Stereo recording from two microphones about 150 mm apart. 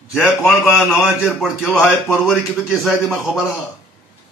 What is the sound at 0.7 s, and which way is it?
Speech, centre (ahead or behind).